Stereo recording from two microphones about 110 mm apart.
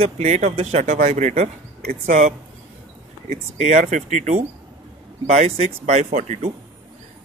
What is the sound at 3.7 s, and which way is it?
Speech, 90° right.